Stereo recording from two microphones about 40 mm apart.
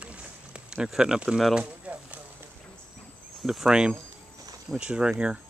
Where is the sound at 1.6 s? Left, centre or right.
Right.